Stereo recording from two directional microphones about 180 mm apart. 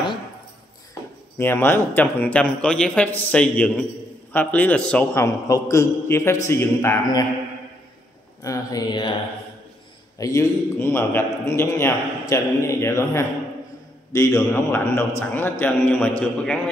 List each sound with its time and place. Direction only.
1.4 s a man's voice: 10° left (ahead or behind)
8.5 s speech: 20° left (ahead or behind)
10.1 s a man's voice: 15° left (ahead or behind)